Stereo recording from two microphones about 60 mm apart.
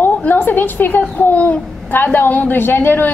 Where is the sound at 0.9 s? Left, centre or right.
Left.